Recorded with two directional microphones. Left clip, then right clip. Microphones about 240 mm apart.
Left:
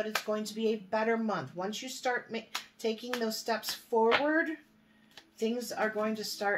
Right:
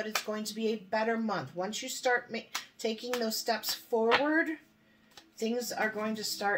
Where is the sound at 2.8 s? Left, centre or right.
Centre.